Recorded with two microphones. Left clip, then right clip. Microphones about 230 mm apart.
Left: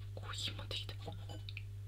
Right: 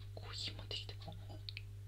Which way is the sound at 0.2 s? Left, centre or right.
Centre.